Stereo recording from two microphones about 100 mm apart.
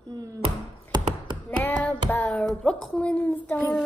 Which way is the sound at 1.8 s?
15° left (ahead or behind).